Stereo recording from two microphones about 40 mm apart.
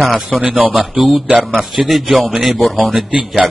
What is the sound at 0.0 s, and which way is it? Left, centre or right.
Speech, centre.